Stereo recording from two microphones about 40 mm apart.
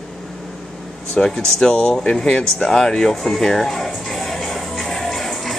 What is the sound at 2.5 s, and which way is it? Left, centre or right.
Music, centre.